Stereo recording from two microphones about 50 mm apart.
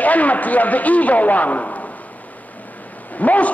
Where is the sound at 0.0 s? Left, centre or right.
Left.